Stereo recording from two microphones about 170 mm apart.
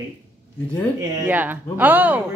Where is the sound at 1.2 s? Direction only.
10° right (ahead or behind).